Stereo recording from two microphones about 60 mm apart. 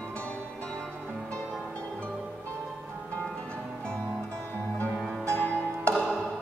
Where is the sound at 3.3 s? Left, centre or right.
Centre.